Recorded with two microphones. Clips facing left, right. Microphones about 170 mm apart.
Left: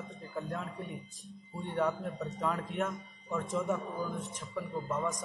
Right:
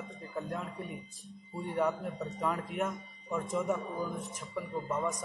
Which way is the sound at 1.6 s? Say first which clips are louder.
Right 1 dB; 5° right (ahead or behind).